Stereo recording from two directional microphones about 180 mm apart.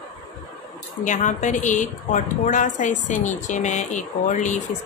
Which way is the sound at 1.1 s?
45° left (ahead or behind).